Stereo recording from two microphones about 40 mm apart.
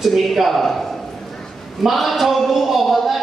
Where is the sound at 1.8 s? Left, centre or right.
Centre.